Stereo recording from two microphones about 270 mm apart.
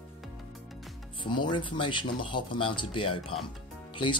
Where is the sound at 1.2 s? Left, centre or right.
Centre.